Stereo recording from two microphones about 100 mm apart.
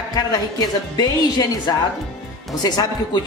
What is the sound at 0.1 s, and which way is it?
A woman's voice, 40° left (ahead or behind).